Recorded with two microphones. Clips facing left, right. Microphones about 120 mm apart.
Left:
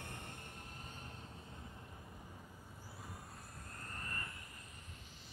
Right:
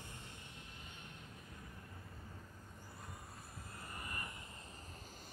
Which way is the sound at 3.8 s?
10° right (ahead or behind).